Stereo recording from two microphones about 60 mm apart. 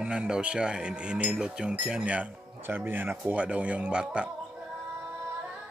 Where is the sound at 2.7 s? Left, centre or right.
Right.